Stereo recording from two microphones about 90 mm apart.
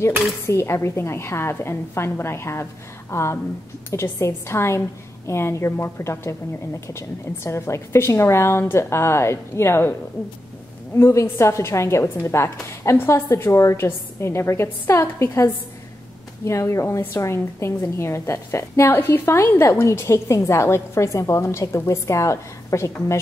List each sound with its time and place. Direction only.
0.5 s a woman's voice: 30° left (ahead or behind)
11.0 s a woman's voice: 30° left (ahead or behind)